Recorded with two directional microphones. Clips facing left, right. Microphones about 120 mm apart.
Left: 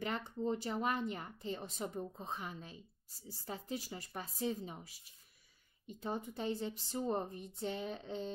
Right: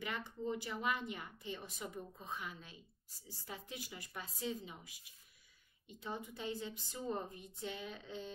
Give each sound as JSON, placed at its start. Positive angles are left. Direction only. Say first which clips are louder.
{"t": 0.4, "sound": "a woman's voice", "louder": "left 4 dB", "side_deg": 35}